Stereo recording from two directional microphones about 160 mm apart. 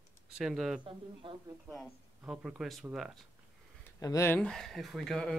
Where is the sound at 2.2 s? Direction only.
5° right (ahead or behind).